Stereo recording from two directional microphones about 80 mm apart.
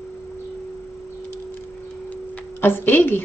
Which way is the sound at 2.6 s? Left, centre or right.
Left.